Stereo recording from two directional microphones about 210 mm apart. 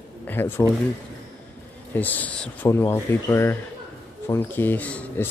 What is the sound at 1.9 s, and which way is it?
Speech, 10° left (ahead or behind).